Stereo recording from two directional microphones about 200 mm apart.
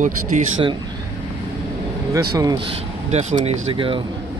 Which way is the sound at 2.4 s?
20° right (ahead or behind).